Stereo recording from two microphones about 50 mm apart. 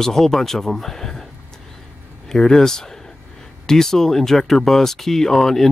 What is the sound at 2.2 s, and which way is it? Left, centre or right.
Speech, centre.